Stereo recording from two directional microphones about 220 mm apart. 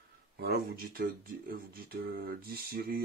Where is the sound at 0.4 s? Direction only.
45° right (ahead or behind).